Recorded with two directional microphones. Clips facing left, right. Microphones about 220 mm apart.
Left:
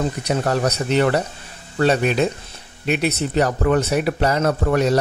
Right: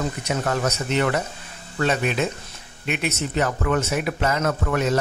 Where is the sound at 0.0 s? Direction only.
35° left (ahead or behind).